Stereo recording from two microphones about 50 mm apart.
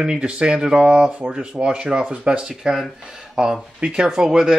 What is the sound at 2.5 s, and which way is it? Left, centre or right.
Speech, centre.